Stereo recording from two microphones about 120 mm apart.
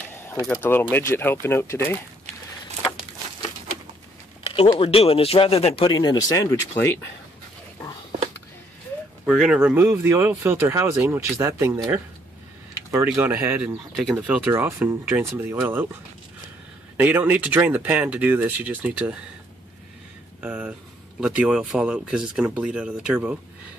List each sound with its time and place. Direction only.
0.5 s speech: 15° left (ahead or behind)
4.4 s a sound: 50° left (ahead or behind)
4.7 s speech: 55° left (ahead or behind)
6.0 s speech: 30° left (ahead or behind)
9.2 s speech: 5° right (ahead or behind)
9.8 s speech: 20° right (ahead or behind)
14.1 s speech: 10° right (ahead or behind)
14.5 s speech: 20° right (ahead or behind)
16.9 s speech: 15° right (ahead or behind)
20.3 s speech: 10° right (ahead or behind)